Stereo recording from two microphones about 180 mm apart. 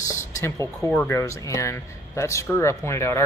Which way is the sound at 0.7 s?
5° left (ahead or behind).